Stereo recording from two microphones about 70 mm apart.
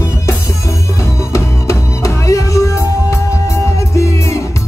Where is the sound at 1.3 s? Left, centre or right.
Left.